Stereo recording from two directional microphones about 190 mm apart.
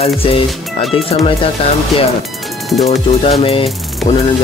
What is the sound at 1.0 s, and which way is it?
Speech, 30° left (ahead or behind).